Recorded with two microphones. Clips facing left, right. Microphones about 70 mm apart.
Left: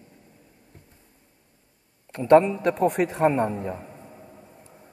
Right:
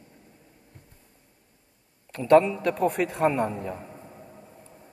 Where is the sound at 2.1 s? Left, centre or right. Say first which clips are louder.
Left 2 dB; left.